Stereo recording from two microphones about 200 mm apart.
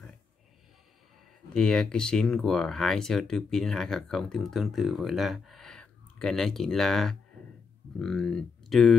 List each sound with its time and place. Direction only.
1.5 s speech: 5° left (ahead or behind)